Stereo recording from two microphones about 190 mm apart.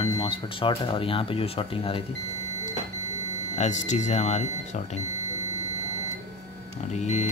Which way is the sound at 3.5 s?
40° left (ahead or behind).